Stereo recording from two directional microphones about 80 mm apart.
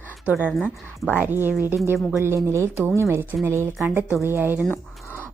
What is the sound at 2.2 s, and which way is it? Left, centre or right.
Speech, right.